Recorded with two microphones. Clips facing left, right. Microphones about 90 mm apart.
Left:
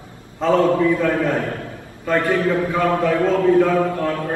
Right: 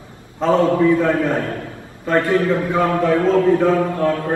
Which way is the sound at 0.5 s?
25° right (ahead or behind).